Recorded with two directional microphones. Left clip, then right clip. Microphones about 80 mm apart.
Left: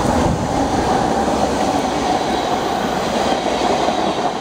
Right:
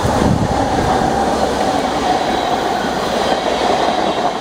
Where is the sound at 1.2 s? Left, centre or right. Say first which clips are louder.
Right 2 dB; right.